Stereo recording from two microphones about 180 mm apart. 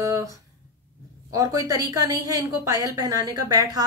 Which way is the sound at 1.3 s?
20° right (ahead or behind).